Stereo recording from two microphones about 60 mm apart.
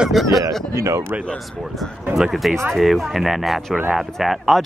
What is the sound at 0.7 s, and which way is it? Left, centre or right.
Speech, right.